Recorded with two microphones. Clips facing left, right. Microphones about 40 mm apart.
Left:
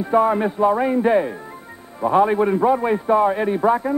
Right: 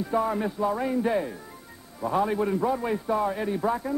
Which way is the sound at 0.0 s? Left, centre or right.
Left.